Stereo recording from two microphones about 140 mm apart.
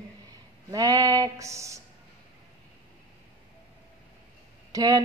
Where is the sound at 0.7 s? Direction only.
25° right (ahead or behind).